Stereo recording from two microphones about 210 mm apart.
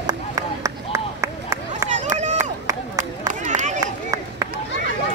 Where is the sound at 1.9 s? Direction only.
35° right (ahead or behind).